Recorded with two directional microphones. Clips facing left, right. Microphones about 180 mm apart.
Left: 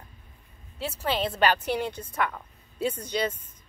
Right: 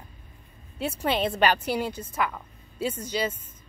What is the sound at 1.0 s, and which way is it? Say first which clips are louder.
A woman's voice: right 1 dB; 10° right (ahead or behind).